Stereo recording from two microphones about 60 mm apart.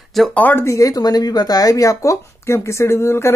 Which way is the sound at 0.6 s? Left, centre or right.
Left.